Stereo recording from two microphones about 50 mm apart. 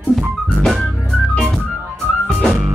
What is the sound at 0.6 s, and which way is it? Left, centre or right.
Music, centre.